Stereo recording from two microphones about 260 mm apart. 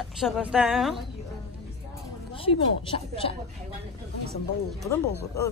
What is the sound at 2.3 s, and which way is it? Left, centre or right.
Speech, left.